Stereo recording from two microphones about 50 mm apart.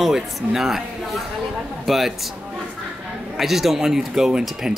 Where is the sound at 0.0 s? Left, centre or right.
Centre.